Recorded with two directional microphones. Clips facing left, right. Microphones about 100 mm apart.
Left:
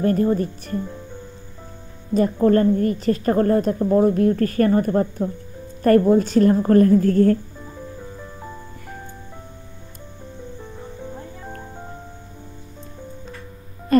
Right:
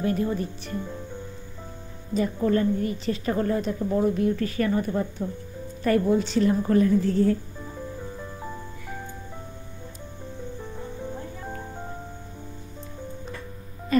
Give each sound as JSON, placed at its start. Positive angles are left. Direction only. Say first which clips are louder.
{"t": 0.0, "sound": "a woman's voice", "louder": "left 7 dB", "side_deg": 45}
{"t": 2.1, "sound": "a woman's voice", "louder": "left 7 dB", "side_deg": 45}
{"t": 7.6, "sound": "music", "louder": "even", "side_deg": 0}
{"t": 10.6, "sound": "music", "louder": "even", "side_deg": 0}